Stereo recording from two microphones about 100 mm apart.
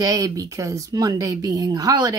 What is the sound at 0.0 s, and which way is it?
Speech, 35° right (ahead or behind).